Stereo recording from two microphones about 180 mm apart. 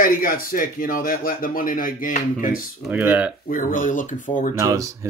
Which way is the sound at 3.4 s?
45° left (ahead or behind).